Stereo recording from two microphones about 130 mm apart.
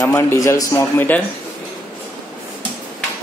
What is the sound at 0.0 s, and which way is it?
Speech, 20° left (ahead or behind).